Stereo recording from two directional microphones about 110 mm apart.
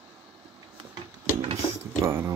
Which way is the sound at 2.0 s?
20° right (ahead or behind).